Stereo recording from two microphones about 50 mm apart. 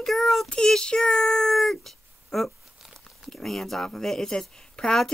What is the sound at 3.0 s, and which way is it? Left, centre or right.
Speech, centre.